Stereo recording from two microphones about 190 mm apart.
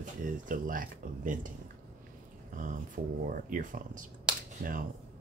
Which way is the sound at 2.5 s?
45° right (ahead or behind).